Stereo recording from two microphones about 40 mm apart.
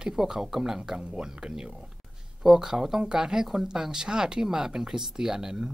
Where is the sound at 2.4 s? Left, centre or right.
Centre.